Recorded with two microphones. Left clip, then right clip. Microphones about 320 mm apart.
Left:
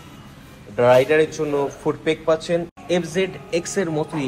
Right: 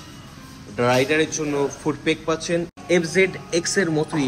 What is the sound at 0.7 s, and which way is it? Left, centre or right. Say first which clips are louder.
A man's voice: left 5 dB; centre.